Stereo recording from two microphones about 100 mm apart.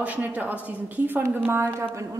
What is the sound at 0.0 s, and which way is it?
A man's voice, 15° right (ahead or behind).